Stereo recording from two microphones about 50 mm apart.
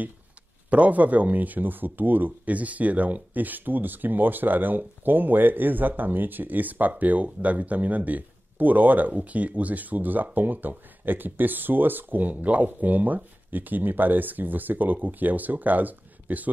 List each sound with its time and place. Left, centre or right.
0.7 s speech: right